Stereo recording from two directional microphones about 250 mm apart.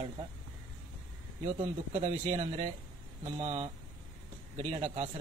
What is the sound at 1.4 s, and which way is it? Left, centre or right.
Speech, right.